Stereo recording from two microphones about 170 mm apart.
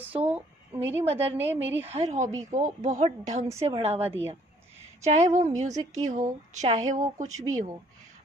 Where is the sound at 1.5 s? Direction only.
90° right.